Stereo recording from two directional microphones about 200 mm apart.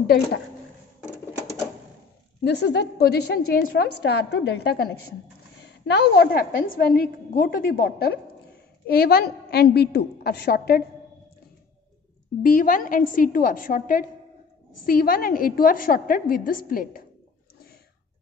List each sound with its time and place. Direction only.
0.0 s a woman's voice: 50° left (ahead or behind)
2.4 s a woman's voice: 55° left (ahead or behind)
12.4 s a woman's voice: 40° left (ahead or behind)